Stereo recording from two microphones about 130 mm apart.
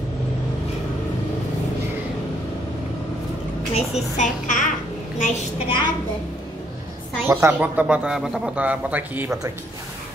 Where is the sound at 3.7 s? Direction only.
60° left (ahead or behind); by 4.7 s 75° left (ahead or behind).